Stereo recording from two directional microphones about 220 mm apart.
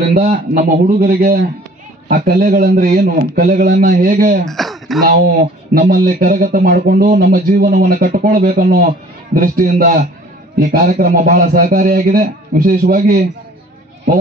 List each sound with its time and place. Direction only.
0.1 s speech: 35° right (ahead or behind)
4.5 s throat clearing: centre (ahead or behind)
5.8 s speech: 40° right (ahead or behind)